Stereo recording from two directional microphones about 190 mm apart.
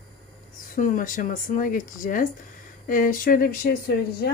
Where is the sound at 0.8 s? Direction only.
45° left (ahead or behind).